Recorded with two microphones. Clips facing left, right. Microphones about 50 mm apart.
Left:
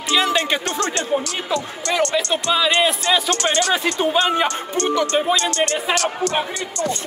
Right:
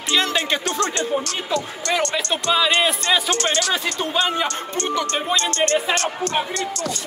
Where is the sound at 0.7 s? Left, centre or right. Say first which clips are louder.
Even; left.